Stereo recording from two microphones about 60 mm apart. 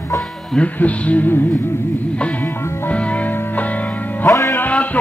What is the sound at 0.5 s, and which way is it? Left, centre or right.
Speech, left.